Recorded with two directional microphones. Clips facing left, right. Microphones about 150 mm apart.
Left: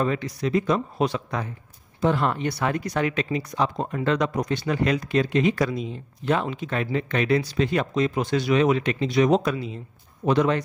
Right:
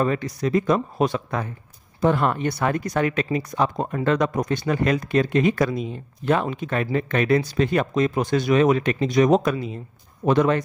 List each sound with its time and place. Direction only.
0.0 s speech: 45° right (ahead or behind)